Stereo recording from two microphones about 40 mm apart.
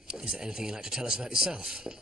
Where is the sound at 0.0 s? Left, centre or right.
Centre.